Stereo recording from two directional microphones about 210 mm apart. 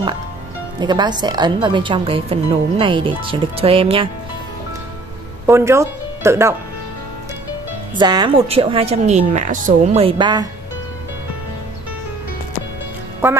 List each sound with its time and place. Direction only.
0.7 s a woman's voice: 20° right (ahead or behind)
5.5 s speech: 15° right (ahead or behind)
8.0 s a woman's voice: 20° right (ahead or behind)